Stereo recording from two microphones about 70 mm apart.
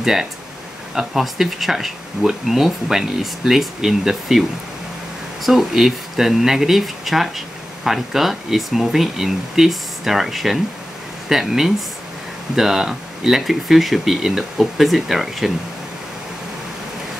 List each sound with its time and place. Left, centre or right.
0.0 s speech: centre